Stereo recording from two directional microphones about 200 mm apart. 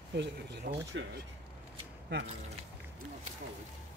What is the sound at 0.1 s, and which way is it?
Speech, 60° right (ahead or behind).